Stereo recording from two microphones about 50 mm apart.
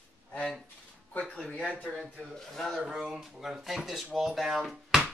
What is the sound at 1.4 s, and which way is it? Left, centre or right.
Speech, left.